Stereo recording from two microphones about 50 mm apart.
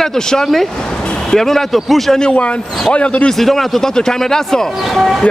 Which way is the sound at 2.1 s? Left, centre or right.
Left.